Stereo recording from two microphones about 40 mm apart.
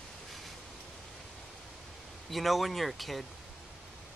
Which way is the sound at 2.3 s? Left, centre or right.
Centre.